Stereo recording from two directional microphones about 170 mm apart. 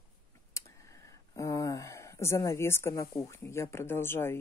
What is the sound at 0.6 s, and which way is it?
Speech, 20° left (ahead or behind).